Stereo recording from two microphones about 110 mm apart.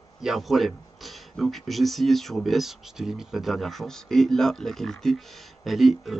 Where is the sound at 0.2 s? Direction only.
5° right (ahead or behind).